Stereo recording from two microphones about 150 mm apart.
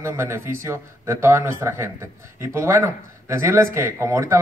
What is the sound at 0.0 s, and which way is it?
Speech, 15° right (ahead or behind).